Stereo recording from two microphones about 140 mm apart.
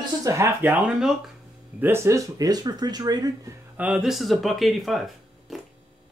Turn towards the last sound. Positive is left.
turn(degrees=0)  # may be behind; listen again after turning